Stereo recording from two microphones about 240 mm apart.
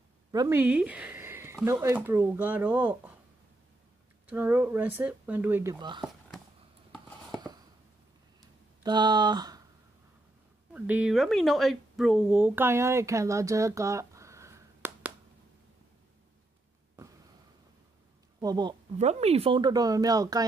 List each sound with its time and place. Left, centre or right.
0.3 s speech: centre
4.3 s speech: centre
6.9 s a sound: centre
8.4 s a sound: centre
10.7 s speech: centre
18.4 s speech: centre
18.9 s speech: right